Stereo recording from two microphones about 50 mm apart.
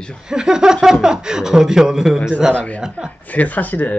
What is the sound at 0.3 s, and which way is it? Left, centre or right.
Speech, centre.